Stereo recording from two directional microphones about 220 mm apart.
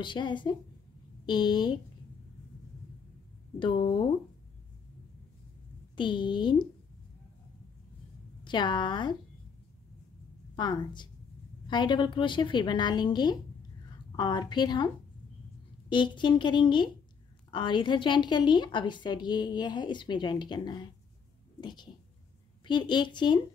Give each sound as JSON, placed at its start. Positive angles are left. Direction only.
{"t": 0.0, "sound": "a woman's voice", "side_deg": 20}
{"t": 3.5, "sound": "a woman's voice", "side_deg": 20}
{"t": 5.9, "sound": "a woman's voice", "side_deg": 20}
{"t": 8.5, "sound": "a woman's voice", "side_deg": 20}
{"t": 10.5, "sound": "a woman's voice", "side_deg": 20}
{"t": 15.9, "sound": "a woman's voice", "side_deg": 20}